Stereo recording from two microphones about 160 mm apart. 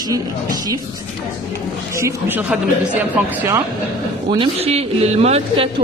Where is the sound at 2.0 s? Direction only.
15° right (ahead or behind).